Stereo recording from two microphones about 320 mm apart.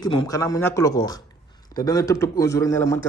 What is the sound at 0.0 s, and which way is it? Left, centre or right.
Speech, centre.